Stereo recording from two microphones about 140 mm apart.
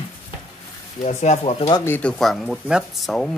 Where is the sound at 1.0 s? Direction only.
55° left (ahead or behind).